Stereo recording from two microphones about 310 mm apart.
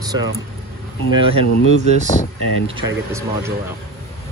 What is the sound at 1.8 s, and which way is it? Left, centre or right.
Speech, right.